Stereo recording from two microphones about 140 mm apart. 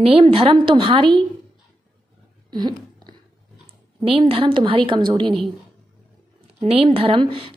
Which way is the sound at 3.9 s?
40° right (ahead or behind).